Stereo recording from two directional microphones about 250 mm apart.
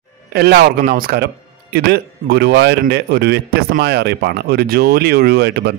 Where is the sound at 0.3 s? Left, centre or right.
Right.